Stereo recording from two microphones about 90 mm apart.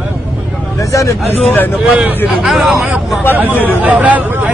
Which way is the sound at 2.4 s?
5° right (ahead or behind).